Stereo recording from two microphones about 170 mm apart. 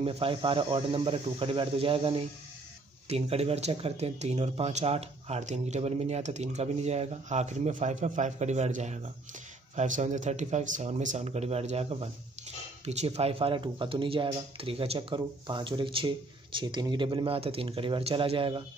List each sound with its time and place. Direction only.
0.0 s speech: 35° right (ahead or behind)